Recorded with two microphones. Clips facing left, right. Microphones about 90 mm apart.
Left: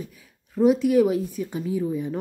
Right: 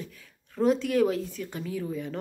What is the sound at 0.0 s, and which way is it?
A woman's voice, 10° left (ahead or behind).